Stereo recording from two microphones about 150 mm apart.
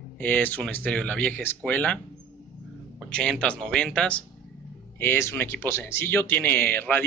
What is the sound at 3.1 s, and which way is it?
Speech, 5° left (ahead or behind).